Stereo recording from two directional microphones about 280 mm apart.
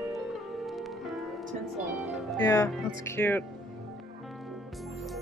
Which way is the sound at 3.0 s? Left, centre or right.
Centre.